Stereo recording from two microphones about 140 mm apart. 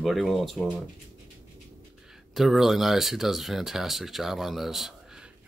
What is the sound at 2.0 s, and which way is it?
Speech, 5° right (ahead or behind).